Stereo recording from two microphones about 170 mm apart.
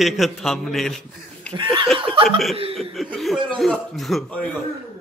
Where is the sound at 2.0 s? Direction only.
30° right (ahead or behind).